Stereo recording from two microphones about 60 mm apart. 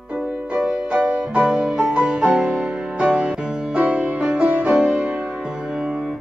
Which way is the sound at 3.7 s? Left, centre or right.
Right.